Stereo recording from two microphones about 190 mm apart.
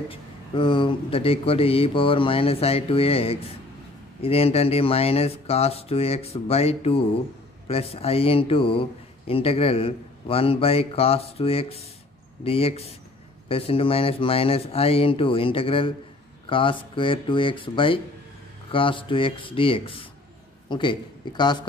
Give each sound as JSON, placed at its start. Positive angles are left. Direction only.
{"t": 0.1, "sound": "speech", "side_deg": 25}